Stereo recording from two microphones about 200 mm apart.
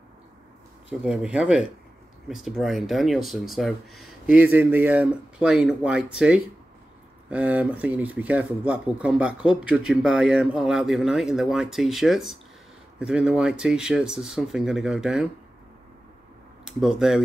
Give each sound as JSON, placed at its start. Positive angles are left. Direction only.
{"t": 0.8, "sound": "speech", "side_deg": -5}
{"t": 16.6, "sound": "speech", "side_deg": 0}